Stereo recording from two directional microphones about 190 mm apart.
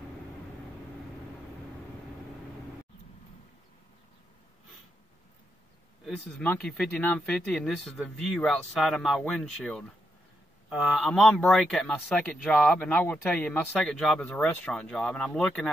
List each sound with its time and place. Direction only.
6.0 s speech: 5° left (ahead or behind)